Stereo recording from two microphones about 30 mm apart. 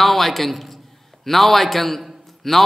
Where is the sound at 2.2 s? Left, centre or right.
Centre.